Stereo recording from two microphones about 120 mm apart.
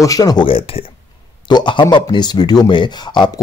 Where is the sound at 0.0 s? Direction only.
30° left (ahead or behind).